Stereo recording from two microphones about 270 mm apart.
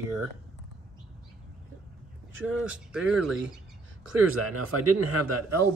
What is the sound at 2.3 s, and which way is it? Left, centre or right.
Speech, right.